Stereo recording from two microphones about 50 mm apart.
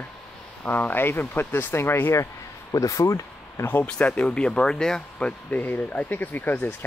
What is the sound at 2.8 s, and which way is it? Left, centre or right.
Speech, left.